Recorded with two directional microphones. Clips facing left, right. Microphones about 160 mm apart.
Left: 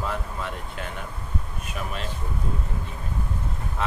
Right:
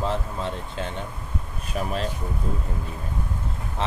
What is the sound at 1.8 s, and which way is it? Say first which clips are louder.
Speech: right 5 dB; 40° right (ahead or behind).